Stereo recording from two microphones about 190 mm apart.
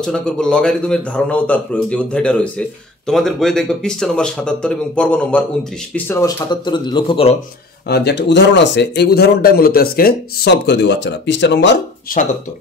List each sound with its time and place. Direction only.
0.0 s speech: 5° left (ahead or behind); by 7.3 s 30° left (ahead or behind)
7.9 s speech: 60° left (ahead or behind)
12.1 s speech: 45° left (ahead or behind)